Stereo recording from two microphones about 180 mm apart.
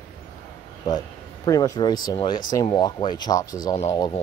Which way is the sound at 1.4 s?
20° left (ahead or behind).